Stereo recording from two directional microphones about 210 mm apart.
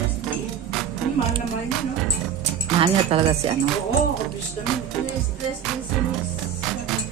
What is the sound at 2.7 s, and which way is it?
Speech, 25° right (ahead or behind).